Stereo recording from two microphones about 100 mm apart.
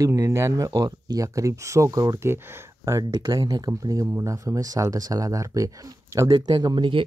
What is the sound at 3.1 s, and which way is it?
Speech, 45° right (ahead or behind).